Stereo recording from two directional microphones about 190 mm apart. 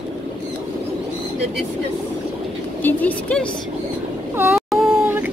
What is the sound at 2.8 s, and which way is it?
Speech, 10° left (ahead or behind).